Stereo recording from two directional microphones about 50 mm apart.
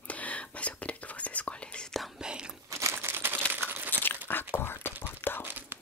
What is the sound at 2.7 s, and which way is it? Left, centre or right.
Crumpling, right.